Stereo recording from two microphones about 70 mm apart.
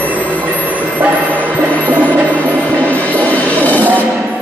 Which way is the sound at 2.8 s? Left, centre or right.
Left.